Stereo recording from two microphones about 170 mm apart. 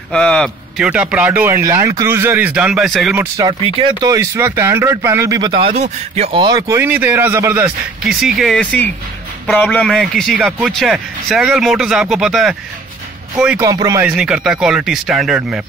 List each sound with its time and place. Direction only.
0.1 s a man's voice: centre (ahead or behind)
3.2 s a man's voice: 20° right (ahead or behind)
5.5 s a man's voice: 35° right (ahead or behind)
6.4 s a man's voice: 20° right (ahead or behind); by 12.5 s centre (ahead or behind)
13.6 s speech: 20° right (ahead or behind)
14.0 s a man's voice: 5° right (ahead or behind)